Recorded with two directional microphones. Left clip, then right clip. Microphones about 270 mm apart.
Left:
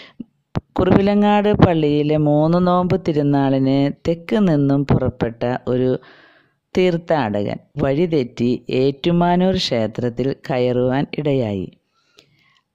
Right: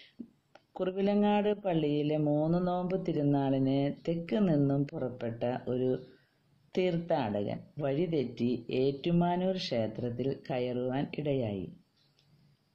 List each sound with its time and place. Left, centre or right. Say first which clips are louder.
0.0 s speech: left 12 dB; left